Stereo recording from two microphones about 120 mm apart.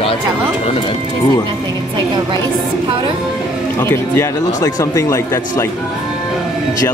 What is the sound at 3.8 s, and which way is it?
Speech, 20° left (ahead or behind).